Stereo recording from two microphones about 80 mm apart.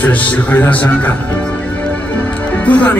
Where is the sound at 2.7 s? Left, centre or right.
Centre.